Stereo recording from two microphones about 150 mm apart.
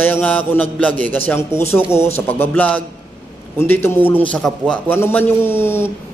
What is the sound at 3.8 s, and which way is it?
Mantra, 15° left (ahead or behind).